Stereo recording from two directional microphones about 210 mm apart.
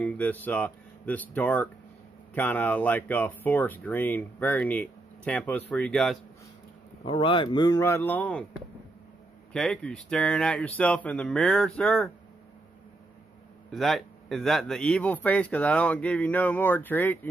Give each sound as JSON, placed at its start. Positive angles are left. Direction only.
{"t": 0.0, "sound": "speech", "side_deg": 5}
{"t": 7.0, "sound": "speech", "side_deg": 25}
{"t": 9.5, "sound": "speech", "side_deg": 5}
{"t": 13.7, "sound": "speech", "side_deg": 0}